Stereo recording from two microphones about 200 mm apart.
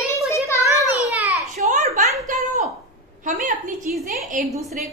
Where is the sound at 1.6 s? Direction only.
35° right (ahead or behind).